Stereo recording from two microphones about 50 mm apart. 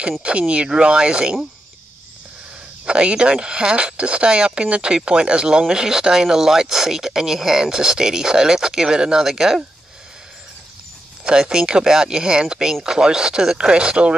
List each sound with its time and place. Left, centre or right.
0.2 s speech: right
2.8 s speech: right
11.2 s speech: centre